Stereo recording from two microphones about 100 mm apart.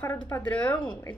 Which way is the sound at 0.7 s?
55° left (ahead or behind).